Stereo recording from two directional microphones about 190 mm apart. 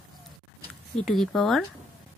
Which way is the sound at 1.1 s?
Centre (ahead or behind).